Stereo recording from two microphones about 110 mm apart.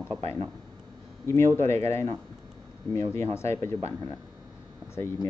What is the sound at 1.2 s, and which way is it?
Speech, 25° left (ahead or behind).